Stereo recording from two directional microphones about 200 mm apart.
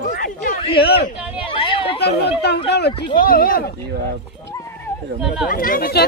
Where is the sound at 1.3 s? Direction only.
25° left (ahead or behind).